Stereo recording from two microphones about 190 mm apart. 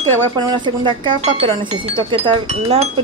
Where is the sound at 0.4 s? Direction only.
20° right (ahead or behind).